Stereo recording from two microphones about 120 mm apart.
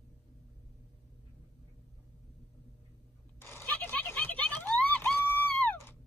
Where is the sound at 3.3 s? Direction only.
20° left (ahead or behind).